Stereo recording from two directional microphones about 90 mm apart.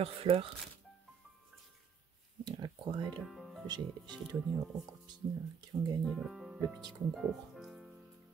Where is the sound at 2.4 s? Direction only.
50° right (ahead or behind).